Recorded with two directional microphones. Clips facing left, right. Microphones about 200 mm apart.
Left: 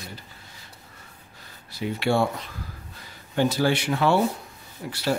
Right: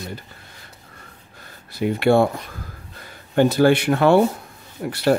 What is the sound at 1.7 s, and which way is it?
Speech, 55° right (ahead or behind).